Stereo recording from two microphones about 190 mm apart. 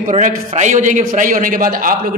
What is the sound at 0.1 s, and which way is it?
A woman's voice, 40° right (ahead or behind).